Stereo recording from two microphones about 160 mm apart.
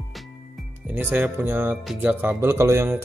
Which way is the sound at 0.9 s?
10° right (ahead or behind).